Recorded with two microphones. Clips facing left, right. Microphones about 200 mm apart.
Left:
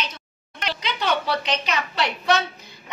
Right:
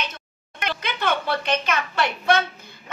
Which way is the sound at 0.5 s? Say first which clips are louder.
Even; 55° right (ahead or behind).